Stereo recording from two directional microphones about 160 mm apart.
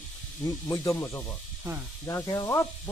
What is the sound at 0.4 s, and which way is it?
Speech, 20° left (ahead or behind).